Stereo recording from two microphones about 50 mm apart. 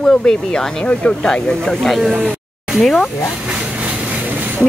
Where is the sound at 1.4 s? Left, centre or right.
Centre.